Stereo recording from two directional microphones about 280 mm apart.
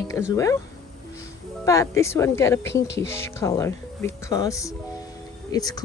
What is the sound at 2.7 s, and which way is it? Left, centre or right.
Speech, left.